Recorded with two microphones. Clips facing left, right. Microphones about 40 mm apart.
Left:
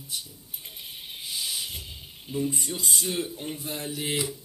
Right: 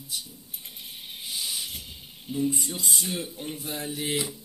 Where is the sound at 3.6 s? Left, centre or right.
Right.